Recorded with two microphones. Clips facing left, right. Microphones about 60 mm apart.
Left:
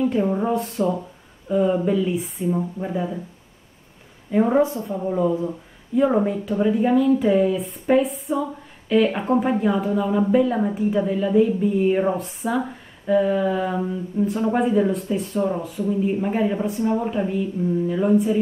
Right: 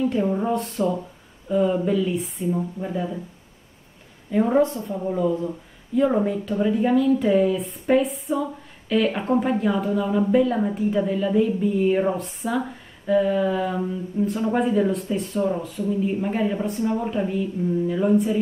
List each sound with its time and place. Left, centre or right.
0.3 s speech: centre
4.3 s speech: centre
4.7 s speech: centre
5.9 s speech: centre